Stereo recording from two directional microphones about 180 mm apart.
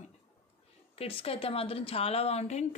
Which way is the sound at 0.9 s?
30° left (ahead or behind).